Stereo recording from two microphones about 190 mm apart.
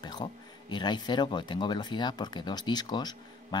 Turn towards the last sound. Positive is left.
turn(degrees=20)  # may be behind; listen again after turning